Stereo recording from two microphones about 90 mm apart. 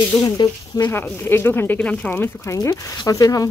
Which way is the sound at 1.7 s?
10° left (ahead or behind).